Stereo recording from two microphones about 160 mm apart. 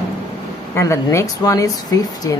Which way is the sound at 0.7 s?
15° left (ahead or behind).